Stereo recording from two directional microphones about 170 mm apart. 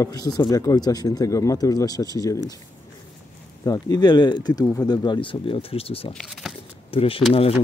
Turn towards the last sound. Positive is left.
turn(degrees=35)  # may be behind; listen again after turning